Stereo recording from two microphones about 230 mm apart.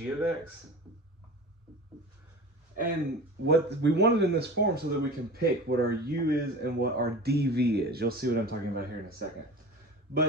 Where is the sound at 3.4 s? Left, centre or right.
Right.